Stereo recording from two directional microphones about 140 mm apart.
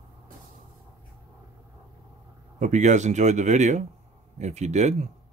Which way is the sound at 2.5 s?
60° right (ahead or behind).